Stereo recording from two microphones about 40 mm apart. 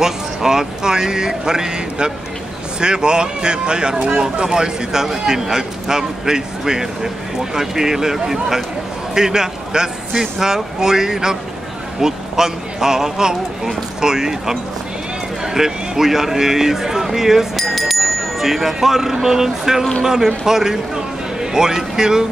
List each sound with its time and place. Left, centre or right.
0.0 s a man's voice: centre